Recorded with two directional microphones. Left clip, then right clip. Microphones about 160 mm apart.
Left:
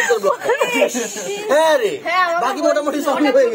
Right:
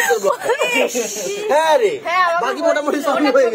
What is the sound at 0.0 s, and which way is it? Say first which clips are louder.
A woman's voice: even; centre (ahead or behind).